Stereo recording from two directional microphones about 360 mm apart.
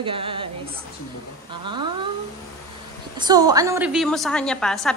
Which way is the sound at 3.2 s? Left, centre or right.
Centre.